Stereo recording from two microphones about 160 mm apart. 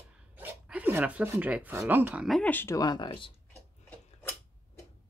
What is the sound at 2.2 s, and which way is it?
Speech, 5° left (ahead or behind).